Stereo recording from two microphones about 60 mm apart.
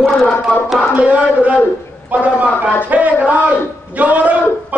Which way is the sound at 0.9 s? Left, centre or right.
Right.